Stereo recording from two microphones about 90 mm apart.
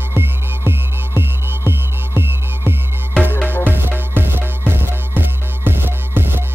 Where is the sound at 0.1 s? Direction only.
25° right (ahead or behind).